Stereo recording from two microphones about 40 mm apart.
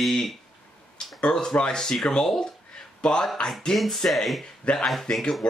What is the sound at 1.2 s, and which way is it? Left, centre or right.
Speech, left.